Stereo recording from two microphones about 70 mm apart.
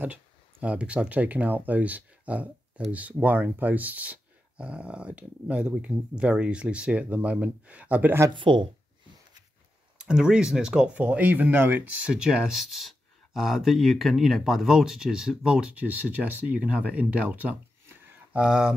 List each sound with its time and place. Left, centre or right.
0.0 s speech: right
9.9 s speech: centre
11.0 s speech: right
12.1 s speech: centre